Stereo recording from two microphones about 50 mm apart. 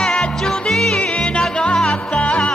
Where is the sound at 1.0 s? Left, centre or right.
Left.